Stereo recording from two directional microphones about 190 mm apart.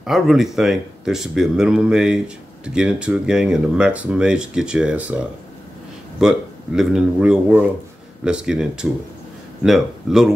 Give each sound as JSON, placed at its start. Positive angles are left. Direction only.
{"t": 0.0, "sound": "speech", "side_deg": 0}